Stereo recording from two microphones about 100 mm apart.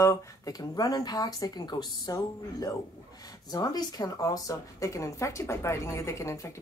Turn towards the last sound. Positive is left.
turn(degrees=30)  # may be behind; listen again after turning